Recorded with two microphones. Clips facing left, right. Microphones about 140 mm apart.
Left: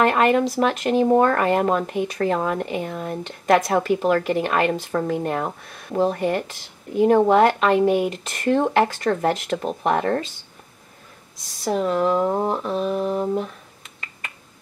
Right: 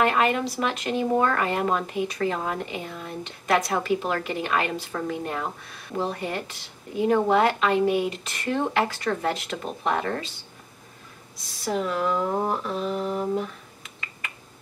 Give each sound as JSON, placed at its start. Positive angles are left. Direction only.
{"t": 0.0, "sound": "speech", "side_deg": 45}
{"t": 11.6, "sound": "speech", "side_deg": 35}